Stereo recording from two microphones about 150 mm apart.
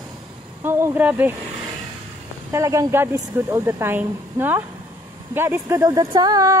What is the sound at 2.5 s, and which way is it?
Speech, 20° right (ahead or behind).